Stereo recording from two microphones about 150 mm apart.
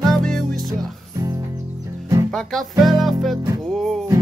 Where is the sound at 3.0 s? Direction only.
Centre (ahead or behind).